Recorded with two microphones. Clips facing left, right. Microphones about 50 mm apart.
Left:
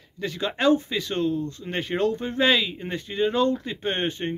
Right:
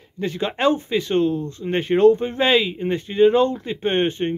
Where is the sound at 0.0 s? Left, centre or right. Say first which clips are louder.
Right 4 dB; right.